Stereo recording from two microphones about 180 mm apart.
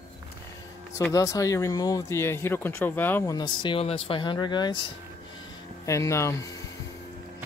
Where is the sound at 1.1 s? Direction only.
20° left (ahead or behind).